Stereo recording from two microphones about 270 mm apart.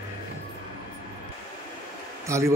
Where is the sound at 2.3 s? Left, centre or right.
Centre.